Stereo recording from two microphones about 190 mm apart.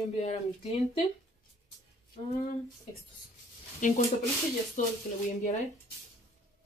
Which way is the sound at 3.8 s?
40° left (ahead or behind).